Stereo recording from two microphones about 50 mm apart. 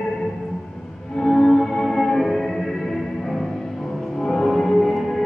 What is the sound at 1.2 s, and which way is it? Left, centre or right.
Music, centre.